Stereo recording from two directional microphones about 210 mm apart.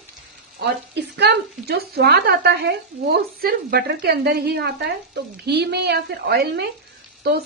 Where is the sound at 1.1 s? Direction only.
50° right (ahead or behind).